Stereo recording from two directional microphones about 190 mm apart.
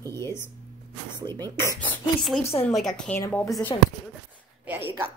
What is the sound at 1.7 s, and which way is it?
Speech, 5° left (ahead or behind).